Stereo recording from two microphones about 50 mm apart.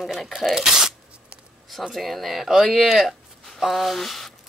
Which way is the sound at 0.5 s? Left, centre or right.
Centre.